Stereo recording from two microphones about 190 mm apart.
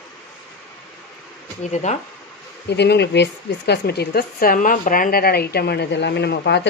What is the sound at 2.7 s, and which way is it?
Speech, 65° left (ahead or behind).